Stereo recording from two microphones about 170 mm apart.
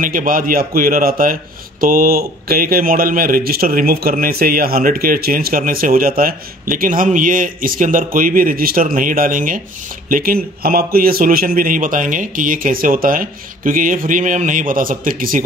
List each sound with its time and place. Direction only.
0.0 s a man's voice: 55° right (ahead or behind)